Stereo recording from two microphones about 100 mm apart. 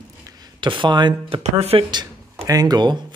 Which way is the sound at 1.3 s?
85° right.